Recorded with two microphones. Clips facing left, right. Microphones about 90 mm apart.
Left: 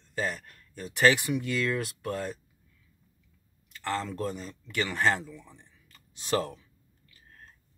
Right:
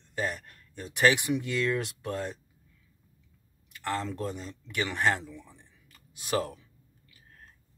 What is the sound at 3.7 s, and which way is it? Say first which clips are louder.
Speech: even; 15° right (ahead or behind).